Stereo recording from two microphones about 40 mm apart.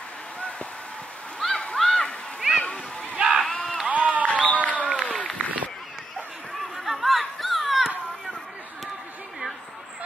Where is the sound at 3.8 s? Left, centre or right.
Right.